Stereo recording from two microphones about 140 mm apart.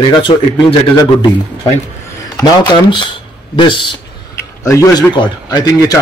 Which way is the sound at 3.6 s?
35° left (ahead or behind).